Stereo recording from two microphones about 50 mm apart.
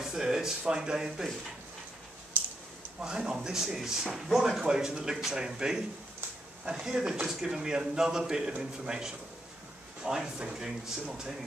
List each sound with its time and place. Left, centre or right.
0.0 s speech: centre
3.0 s speech: centre